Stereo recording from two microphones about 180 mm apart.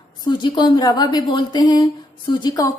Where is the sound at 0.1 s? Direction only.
25° left (ahead or behind).